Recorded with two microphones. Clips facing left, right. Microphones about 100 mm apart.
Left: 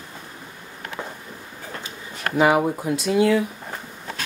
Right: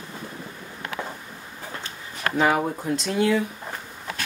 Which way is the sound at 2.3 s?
5° left (ahead or behind).